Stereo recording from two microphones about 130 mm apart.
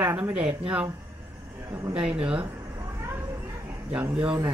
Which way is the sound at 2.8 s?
20° right (ahead or behind).